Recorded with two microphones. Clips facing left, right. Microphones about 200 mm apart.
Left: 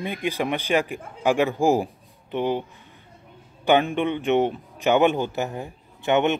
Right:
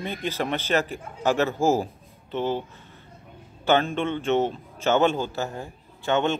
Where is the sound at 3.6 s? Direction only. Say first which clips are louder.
Left 2 dB; 15° left (ahead or behind).